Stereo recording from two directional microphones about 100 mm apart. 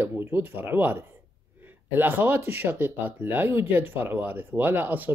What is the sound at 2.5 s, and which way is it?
Speech, 20° right (ahead or behind).